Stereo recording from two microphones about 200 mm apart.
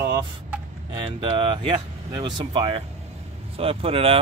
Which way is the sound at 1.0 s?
25° right (ahead or behind).